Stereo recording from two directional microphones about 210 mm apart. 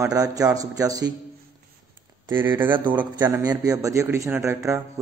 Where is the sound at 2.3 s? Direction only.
10° right (ahead or behind).